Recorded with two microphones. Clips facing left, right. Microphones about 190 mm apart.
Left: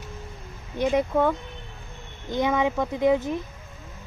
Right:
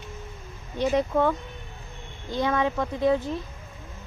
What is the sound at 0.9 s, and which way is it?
Speech, 10° left (ahead or behind).